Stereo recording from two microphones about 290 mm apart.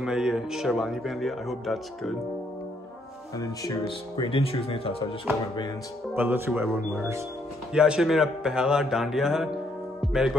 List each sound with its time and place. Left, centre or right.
0.0 s speech: centre
3.3 s speech: centre
6.1 s speech: centre